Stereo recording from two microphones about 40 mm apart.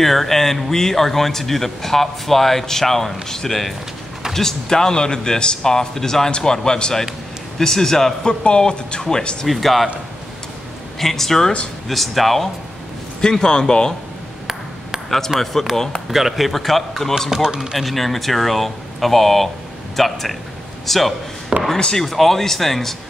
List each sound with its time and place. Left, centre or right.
0.0 s speech: centre
8.3 s speech: left
9.5 s speech: centre
11.0 s speech: centre
13.2 s speech: centre
15.0 s speech: centre
16.1 s speech: centre
17.3 s speech: centre
17.7 s a man's voice: centre
21.5 s chop: right
21.9 s speech: centre